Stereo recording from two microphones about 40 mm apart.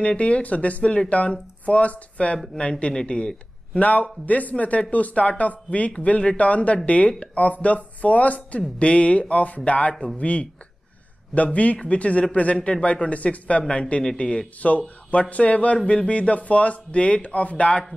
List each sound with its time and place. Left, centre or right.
0.0 s speech: left
3.8 s speech: left
15.0 s speech: left